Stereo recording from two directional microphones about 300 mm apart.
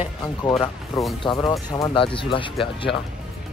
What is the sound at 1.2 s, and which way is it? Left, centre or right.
Speech, centre.